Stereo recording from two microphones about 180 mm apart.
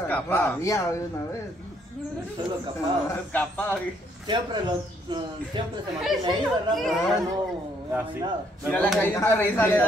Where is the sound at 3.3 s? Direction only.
10° left (ahead or behind).